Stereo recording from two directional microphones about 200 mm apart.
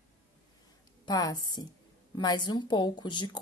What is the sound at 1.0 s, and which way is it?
A woman's voice, 20° left (ahead or behind).